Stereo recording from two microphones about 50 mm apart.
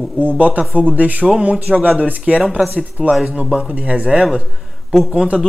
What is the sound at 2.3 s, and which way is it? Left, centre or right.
Speech, centre.